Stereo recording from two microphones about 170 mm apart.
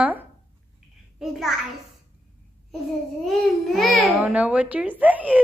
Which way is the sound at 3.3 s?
Centre (ahead or behind).